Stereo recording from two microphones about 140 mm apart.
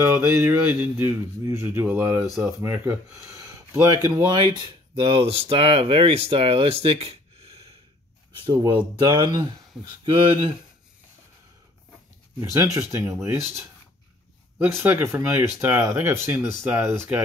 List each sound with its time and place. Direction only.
0.0 s speech: 15° right (ahead or behind)
4.3 s speech: 35° right (ahead or behind)
8.4 s speech: 35° right (ahead or behind)
12.4 s speech: 20° right (ahead or behind)
14.6 s speech: 15° right (ahead or behind)